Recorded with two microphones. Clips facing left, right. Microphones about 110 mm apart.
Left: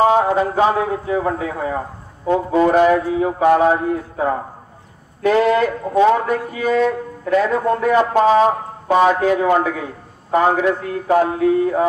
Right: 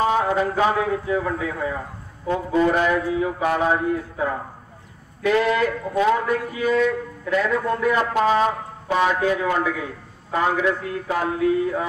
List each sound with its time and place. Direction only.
0.0 s speech: 30° left (ahead or behind)
6.7 s music: 50° left (ahead or behind)
7.4 s speech: 35° left (ahead or behind)